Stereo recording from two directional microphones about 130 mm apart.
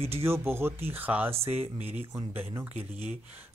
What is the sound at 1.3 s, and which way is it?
Speech, 50° right (ahead or behind).